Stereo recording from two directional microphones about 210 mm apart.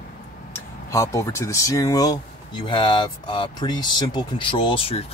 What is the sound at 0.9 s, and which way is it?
Speech, 15° left (ahead or behind).